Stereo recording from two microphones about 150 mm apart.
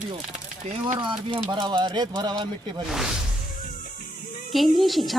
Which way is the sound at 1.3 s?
30° right (ahead or behind).